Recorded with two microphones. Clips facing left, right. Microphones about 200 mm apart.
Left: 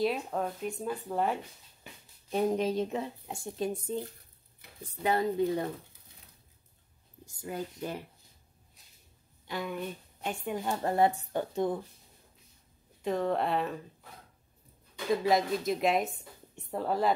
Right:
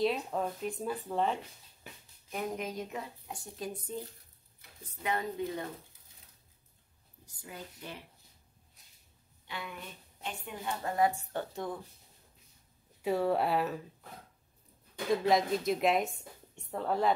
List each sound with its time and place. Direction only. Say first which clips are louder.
0.0 s speech: left 1 dB; centre (ahead or behind)
2.3 s speech: left 8 dB; 30° left (ahead or behind)
5.0 s a woman's voice: left 6 dB; 35° left (ahead or behind)
7.4 s speech: left 9 dB; 45° left (ahead or behind)
9.5 s a woman's voice: left 8 dB; 45° left (ahead or behind)
11.1 s speech: left 3 dB; 20° left (ahead or behind)
13.0 s speech: even; 5° right (ahead or behind)
15.2 s a woman's voice: even; centre (ahead or behind)